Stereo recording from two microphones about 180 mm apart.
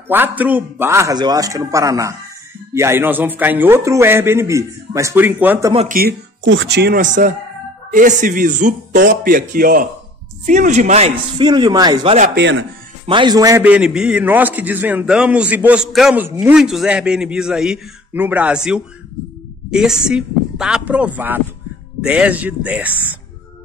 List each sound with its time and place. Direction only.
0.1 s a man's voice: 10° right (ahead or behind)
5.9 s speech: 55° right (ahead or behind)
6.5 s speech: 80° right
7.0 s speech: 45° right (ahead or behind)
8.9 s speech: 70° right (ahead or behind); by 11.1 s 40° right (ahead or behind)
11.3 s speech: 25° right (ahead or behind)
12.4 s speech: 90° right
13.0 s speech: 25° right (ahead or behind)
13.7 s a man's voice: 5° right (ahead or behind)